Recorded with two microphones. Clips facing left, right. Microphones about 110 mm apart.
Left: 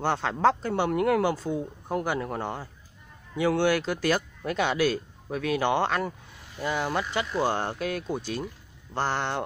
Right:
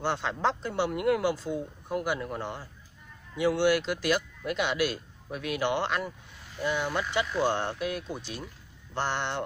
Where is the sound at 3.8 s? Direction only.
40° left (ahead or behind).